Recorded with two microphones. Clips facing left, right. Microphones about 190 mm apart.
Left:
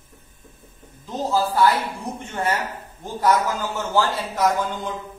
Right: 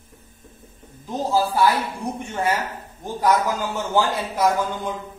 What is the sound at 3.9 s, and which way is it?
Speech, 15° right (ahead or behind).